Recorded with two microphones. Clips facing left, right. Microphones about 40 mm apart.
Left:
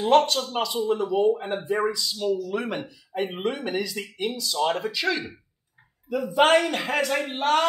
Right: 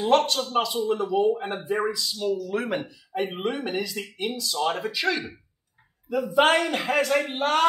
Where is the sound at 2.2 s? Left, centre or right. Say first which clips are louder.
Left 1 dB; centre.